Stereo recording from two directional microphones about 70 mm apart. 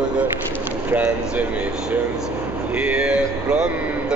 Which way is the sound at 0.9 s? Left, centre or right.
Right.